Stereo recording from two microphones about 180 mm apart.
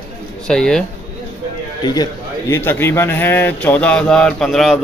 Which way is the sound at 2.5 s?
10° left (ahead or behind).